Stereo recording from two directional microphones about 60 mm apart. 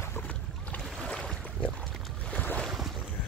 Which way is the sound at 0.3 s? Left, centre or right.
Left.